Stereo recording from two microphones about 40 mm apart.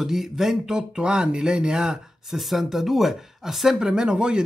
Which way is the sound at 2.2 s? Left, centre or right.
Centre.